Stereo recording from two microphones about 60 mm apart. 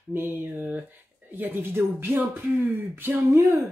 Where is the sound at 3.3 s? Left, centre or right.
Right.